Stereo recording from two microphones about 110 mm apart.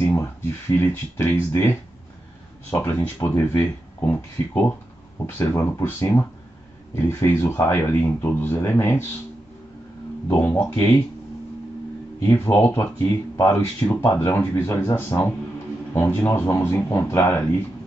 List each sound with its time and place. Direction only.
0.1 s speech: 25° left (ahead or behind)
10.2 s speech: 25° left (ahead or behind)
12.2 s speech: 15° left (ahead or behind)